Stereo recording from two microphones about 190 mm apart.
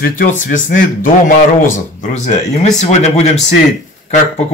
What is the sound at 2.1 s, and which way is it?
Speech, 35° left (ahead or behind).